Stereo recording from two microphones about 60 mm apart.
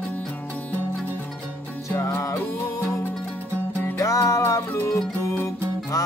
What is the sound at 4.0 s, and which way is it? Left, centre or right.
Music, left.